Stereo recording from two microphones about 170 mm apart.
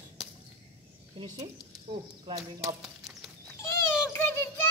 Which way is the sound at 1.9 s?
30° right (ahead or behind).